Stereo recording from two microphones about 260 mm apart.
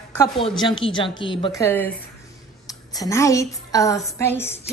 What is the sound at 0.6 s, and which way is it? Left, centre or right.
A woman's voice, centre.